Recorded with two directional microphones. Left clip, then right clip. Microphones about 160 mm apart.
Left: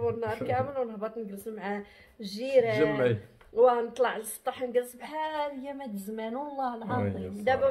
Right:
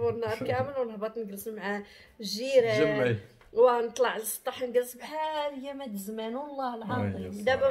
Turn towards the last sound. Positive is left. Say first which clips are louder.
# even
turn(degrees=-10)  # may be behind; listen again after turning